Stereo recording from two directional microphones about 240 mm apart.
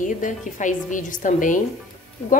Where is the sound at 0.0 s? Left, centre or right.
Left.